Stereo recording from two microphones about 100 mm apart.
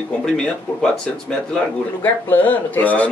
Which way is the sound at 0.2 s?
10° left (ahead or behind).